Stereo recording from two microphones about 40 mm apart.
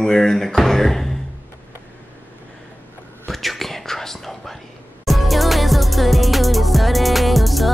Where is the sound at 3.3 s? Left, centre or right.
Centre.